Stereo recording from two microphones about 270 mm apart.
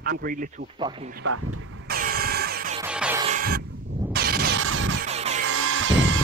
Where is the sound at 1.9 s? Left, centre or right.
Right.